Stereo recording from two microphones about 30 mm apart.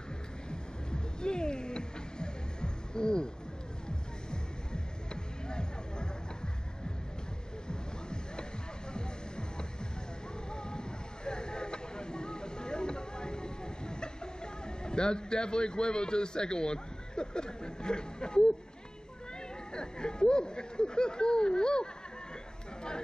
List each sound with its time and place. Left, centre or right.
0.5 s music: left
7.6 s music: left
10.5 s a sound: left
19.7 s speech: left